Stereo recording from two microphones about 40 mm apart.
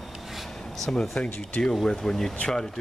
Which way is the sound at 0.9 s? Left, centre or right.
Centre.